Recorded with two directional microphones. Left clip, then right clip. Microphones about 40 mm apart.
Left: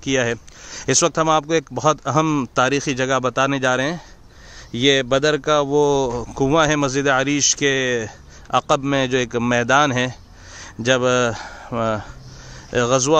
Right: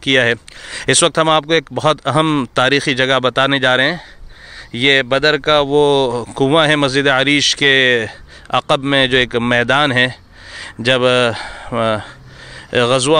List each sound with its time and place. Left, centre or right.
0.0 s speech: right
4.7 s speech: left
5.4 s speech: centre
6.0 s speech: right
6.3 s speech: right
8.9 s speech: right
9.5 s a sound: right
10.9 s speech: right
11.3 s speech: centre